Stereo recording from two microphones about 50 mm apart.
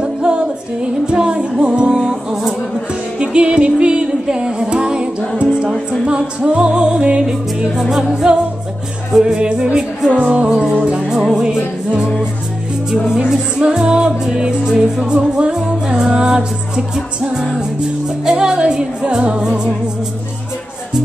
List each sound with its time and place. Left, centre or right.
0.0 s music: centre
3.2 s music: centre
10.1 s music: right
10.5 s music: centre
12.9 s music: centre